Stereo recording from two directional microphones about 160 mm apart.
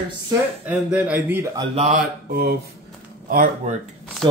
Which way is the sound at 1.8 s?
45° right (ahead or behind).